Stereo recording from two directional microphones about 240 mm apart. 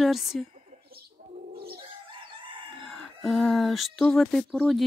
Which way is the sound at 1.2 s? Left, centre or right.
Right.